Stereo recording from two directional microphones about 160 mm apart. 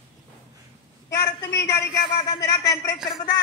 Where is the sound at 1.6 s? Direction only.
20° left (ahead or behind).